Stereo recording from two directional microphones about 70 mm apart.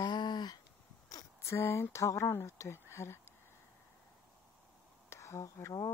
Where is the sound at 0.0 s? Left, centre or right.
Left.